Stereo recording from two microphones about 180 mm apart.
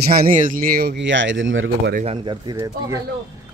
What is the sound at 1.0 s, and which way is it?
Speech, 90° right.